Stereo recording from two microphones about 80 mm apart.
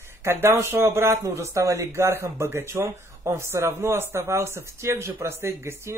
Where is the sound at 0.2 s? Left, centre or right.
Right.